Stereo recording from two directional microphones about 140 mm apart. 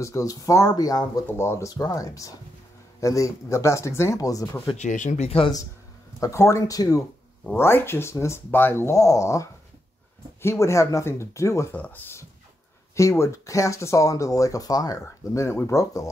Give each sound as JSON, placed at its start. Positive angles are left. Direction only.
{"t": 0.0, "sound": "speech", "side_deg": 25}
{"t": 4.7, "sound": "speech", "side_deg": 60}
{"t": 6.1, "sound": "speech", "side_deg": 20}